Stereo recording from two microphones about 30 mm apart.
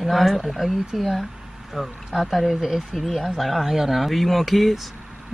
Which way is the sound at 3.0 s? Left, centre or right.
Centre.